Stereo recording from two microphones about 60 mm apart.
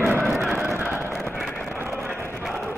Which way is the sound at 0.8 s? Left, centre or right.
Right.